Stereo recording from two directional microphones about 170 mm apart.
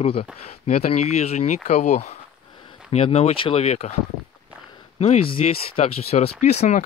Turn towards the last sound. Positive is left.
turn(degrees=40)  # may be behind; listen again after turning